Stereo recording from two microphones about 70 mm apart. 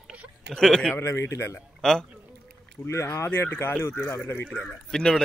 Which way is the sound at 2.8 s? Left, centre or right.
Left.